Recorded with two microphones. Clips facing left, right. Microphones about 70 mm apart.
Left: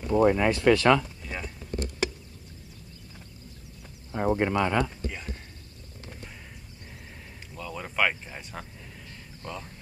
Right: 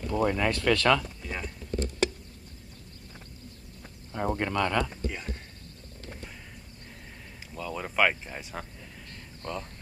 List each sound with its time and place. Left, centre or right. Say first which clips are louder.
0.0 s speech: left 5 dB; centre
1.2 s a sound: even; centre
4.1 s speech: left 4 dB; centre
4.8 s speech: right 1 dB; centre
7.5 s speech: right 2 dB; centre